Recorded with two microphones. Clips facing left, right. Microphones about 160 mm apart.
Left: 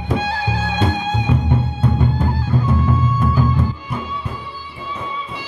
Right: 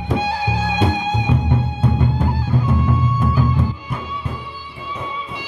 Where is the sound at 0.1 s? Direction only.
15° right (ahead or behind).